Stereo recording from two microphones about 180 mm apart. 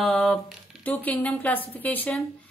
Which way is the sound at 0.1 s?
5° left (ahead or behind).